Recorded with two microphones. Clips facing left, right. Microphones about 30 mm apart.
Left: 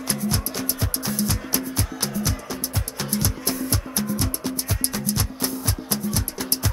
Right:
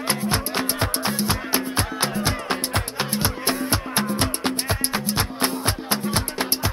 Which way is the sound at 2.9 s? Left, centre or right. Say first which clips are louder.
Right 2 dB; right.